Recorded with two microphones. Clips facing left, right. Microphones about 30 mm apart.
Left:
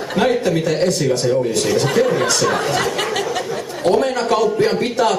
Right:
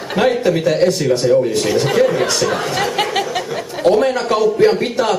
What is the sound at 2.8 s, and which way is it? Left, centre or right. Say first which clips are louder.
Speech: right 2 dB; centre.